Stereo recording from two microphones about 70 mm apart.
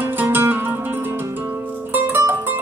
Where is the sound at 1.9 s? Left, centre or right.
Right.